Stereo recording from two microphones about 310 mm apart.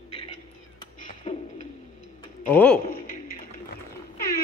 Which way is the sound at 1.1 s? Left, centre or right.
Left.